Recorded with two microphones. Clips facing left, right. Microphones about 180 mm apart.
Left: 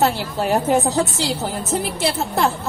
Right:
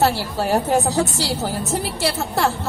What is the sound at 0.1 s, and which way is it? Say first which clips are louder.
A woman's voice: even; 15° left (ahead or behind).